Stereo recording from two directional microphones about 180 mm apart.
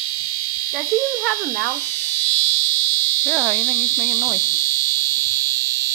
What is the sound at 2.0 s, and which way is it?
Frog, 10° left (ahead or behind).